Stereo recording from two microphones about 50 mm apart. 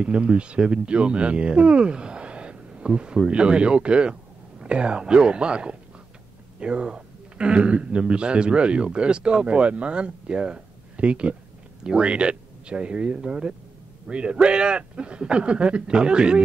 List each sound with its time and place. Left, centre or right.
0.0 s a man's voice: right